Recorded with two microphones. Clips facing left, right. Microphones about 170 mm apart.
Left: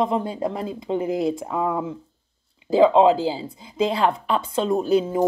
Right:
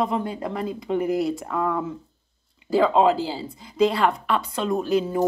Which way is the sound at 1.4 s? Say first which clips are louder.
Left 1 dB; 10° left (ahead or behind).